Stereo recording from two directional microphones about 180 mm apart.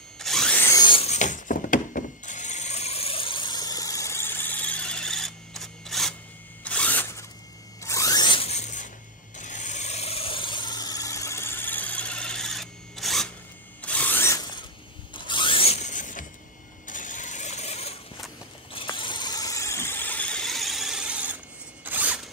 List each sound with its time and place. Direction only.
0.2 s ratchet: centre (ahead or behind)
0.7 s a sound: 30° left (ahead or behind); by 7.2 s 15° left (ahead or behind)
7.8 s zipper: 15° left (ahead or behind); by 8.8 s 40° left (ahead or behind)
9.4 s a sound: 45° left (ahead or behind)
16.8 s mechanisms: 45° left (ahead or behind)
18.7 s squeal: 30° left (ahead or behind); by 21.4 s 5° right (ahead or behind)
21.8 s zipper: 10° right (ahead or behind)